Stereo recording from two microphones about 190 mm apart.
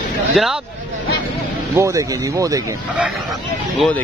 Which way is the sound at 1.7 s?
15° right (ahead or behind).